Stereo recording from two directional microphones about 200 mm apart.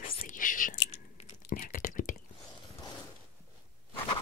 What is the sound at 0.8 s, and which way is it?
Chewing, 35° left (ahead or behind).